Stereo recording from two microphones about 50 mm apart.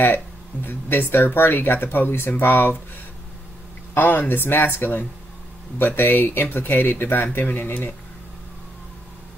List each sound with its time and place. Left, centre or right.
0.7 s speech: left
3.9 s speech: left